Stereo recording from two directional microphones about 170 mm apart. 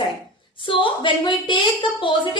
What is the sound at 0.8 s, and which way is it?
Speech, 30° left (ahead or behind).